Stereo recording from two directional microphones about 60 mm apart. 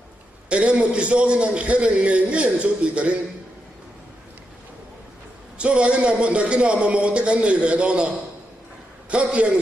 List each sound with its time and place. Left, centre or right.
0.5 s a man's voice: centre
5.6 s a man's voice: centre
9.1 s a man's voice: centre